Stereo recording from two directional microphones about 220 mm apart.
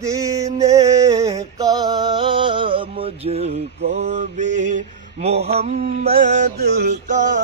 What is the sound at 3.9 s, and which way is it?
Mantra, 30° right (ahead or behind).